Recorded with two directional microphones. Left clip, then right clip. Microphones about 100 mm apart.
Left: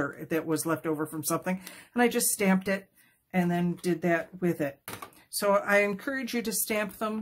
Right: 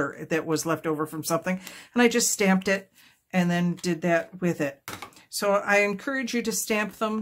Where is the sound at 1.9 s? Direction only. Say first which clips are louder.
Right 4 dB; 25° right (ahead or behind).